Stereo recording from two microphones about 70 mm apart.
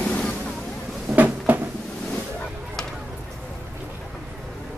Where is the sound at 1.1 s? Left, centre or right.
Right.